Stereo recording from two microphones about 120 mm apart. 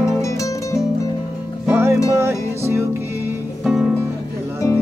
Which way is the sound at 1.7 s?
20° right (ahead or behind).